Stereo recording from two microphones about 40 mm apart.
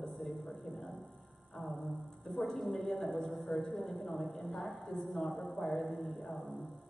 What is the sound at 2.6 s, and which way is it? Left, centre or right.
A woman's voice, centre.